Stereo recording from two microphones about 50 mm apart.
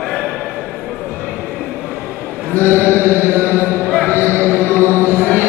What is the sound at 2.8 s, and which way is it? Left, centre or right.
Chant, left.